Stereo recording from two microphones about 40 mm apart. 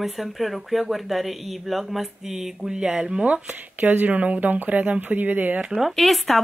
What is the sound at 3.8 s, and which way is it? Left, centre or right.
Speech, right.